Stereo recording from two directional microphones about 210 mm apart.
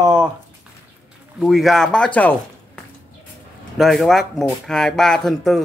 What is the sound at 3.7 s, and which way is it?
Speech, centre (ahead or behind).